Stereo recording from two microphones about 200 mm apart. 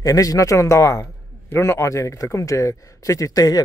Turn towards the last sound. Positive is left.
turn(degrees=20)  # may be behind; listen again after turning